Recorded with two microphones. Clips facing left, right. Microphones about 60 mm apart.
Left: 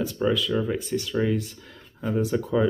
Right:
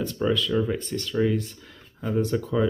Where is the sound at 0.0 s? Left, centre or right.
Centre.